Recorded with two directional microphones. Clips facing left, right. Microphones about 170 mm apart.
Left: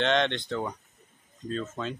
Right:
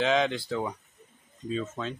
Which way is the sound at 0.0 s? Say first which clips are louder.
Even; 5° right (ahead or behind).